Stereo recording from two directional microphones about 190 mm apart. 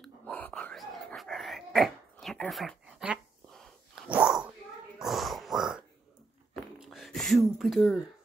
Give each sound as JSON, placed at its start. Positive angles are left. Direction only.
{"t": 0.0, "sound": "whispering", "side_deg": 5}
{"t": 4.9, "sound": "dog", "side_deg": 0}
{"t": 6.5, "sound": "a sound", "side_deg": 0}